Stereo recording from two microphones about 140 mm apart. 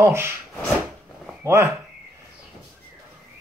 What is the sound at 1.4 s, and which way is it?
Speech, 20° right (ahead or behind).